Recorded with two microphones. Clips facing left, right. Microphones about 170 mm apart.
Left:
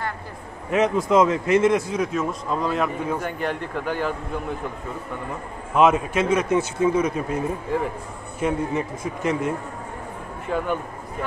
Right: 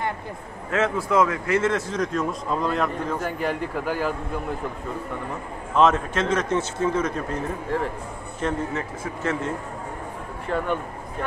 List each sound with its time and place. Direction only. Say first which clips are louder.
0.7 s a man's voice: left 3 dB; 15° left (ahead or behind)
3.3 s speech: right 1 dB; 5° right (ahead or behind)
5.8 s a man's voice: left 2 dB; 10° left (ahead or behind)
10.5 s speech: left 1 dB; 5° left (ahead or behind)